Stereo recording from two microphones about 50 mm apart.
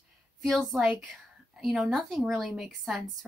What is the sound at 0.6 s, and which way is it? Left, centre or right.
Speech, centre.